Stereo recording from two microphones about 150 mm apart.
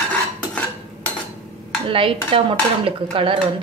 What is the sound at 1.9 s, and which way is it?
Dishes, 35° right (ahead or behind).